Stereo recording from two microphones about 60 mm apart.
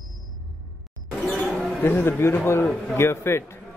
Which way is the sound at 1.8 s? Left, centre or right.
Left.